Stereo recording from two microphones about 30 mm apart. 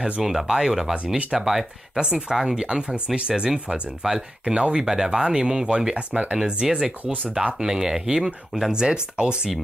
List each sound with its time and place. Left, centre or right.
0.2 s speech: centre
0.9 s speech: right
1.4 s speech: centre
2.0 s speech: right
2.3 s speech: centre
3.2 s speech: right
4.0 s speech: centre
4.6 s speech: right
4.8 s speech: centre
5.9 s speech: right
6.4 s speech: right
7.6 s speech: centre
8.7 s speech: right